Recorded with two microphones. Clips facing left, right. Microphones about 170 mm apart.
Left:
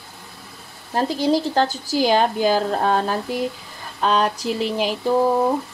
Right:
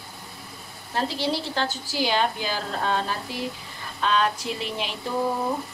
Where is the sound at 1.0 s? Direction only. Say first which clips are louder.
Left 7 dB; 45° left (ahead or behind).